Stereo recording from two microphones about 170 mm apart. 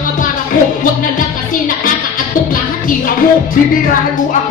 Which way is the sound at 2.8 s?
55° left (ahead or behind).